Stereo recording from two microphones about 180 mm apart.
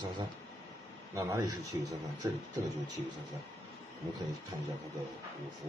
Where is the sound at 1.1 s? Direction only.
20° right (ahead or behind).